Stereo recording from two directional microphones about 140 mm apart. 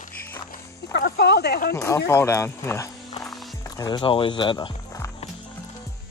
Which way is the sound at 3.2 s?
Centre (ahead or behind).